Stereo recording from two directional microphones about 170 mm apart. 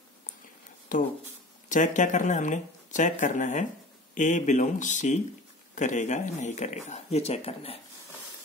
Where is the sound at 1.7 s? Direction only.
45° left (ahead or behind).